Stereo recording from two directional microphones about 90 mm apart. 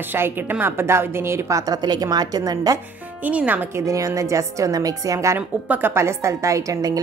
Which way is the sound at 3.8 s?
40° right (ahead or behind).